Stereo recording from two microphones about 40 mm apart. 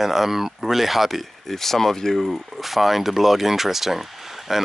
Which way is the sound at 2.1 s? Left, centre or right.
Centre.